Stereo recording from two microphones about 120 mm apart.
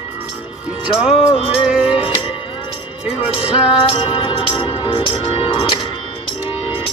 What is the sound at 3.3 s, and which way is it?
Music, 50° left (ahead or behind).